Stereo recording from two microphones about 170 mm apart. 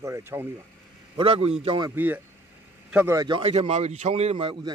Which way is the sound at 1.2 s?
35° right (ahead or behind).